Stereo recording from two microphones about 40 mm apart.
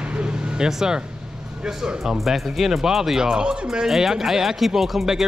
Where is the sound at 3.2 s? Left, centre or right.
Right.